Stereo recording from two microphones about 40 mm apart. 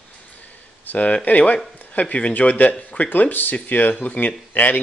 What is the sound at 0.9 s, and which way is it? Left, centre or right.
Speech, left.